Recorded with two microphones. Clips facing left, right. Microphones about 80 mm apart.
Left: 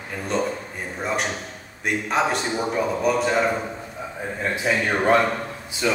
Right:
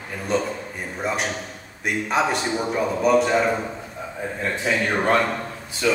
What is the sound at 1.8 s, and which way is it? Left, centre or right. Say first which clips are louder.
Speech: even; centre.